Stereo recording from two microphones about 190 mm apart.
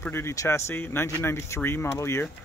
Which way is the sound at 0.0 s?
15° left (ahead or behind).